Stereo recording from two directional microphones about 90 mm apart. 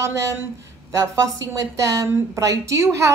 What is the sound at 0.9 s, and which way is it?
A woman's voice, 35° right (ahead or behind).